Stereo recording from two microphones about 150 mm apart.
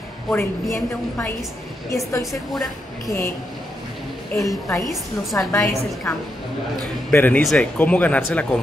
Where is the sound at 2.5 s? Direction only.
Centre (ahead or behind).